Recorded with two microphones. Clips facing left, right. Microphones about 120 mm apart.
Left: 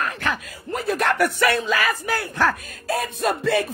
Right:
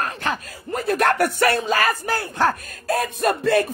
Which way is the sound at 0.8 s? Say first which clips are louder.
Right 3 dB; 55° right (ahead or behind).